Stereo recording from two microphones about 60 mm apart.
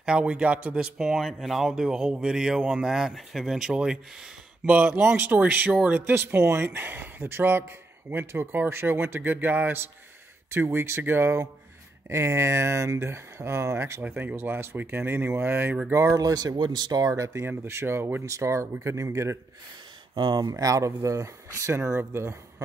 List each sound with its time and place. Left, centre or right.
0.0 s speech: centre
4.6 s speech: right
14.0 s speech: right
16.2 s speech: right
17.1 s speech: right
17.5 s speech: right
20.4 s speech: right